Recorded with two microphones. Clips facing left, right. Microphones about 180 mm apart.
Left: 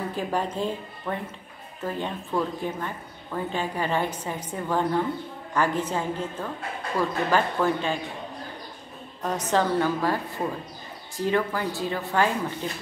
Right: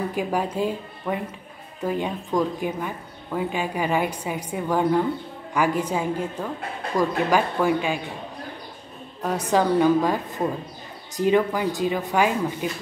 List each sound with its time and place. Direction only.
0.1 s speech: 10° right (ahead or behind)
9.2 s speech: 10° right (ahead or behind)